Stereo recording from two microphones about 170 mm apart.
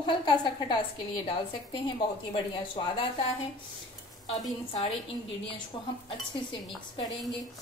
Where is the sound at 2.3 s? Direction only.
30° left (ahead or behind).